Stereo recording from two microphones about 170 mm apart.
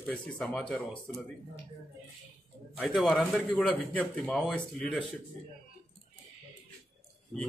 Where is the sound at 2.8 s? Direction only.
Centre (ahead or behind).